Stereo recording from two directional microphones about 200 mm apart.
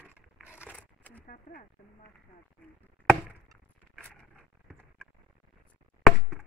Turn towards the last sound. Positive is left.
turn(degrees=0)  # may be behind; listen again after turning